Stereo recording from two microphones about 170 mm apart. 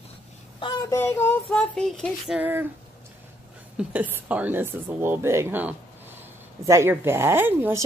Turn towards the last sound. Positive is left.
turn(degrees=-15)  # may be behind; listen again after turning